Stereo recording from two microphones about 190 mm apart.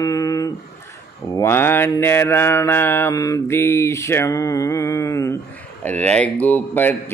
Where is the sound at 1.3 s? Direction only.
15° left (ahead or behind).